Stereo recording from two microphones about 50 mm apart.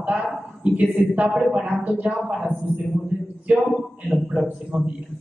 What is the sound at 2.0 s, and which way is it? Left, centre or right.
Speech, right.